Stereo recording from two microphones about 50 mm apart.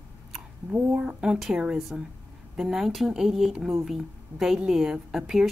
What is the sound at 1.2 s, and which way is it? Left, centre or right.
Speech, centre.